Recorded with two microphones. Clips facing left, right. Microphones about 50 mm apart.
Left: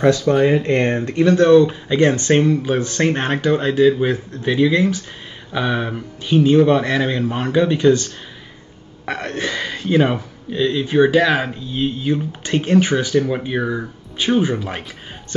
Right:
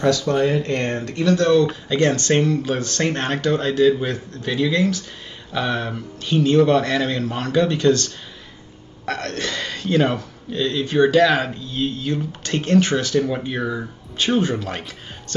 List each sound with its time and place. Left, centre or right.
0.0 s speech: left